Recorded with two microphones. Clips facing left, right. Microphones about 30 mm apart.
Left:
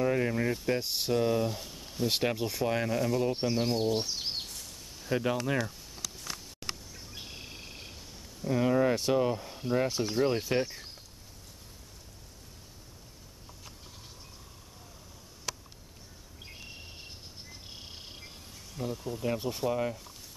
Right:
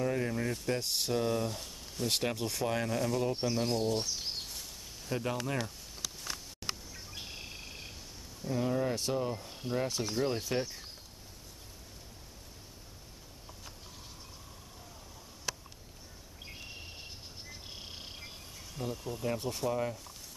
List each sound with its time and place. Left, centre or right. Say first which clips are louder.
0.0 s speech: left 4 dB; centre
3.3 s speech: left 2 dB; centre
4.5 s a sound: even; centre
5.1 s speech: left 5 dB; centre
6.9 s bird: even; centre
8.5 s speech: left 6 dB; left
9.5 s cricket: left 5 dB; centre
9.8 s speech: left 4 dB; centre
16.4 s a sound: even; centre
17.6 s cricket: even; centre
18.8 s speech: left 3 dB; centre